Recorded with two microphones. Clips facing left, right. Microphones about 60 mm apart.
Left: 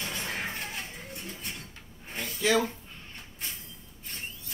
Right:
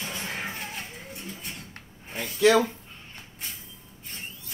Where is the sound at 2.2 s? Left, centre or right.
Right.